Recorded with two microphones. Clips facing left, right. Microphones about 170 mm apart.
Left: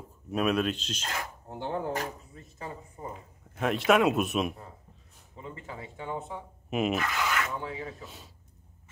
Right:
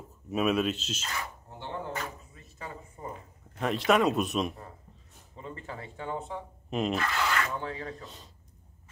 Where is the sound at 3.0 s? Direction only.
10° left (ahead or behind).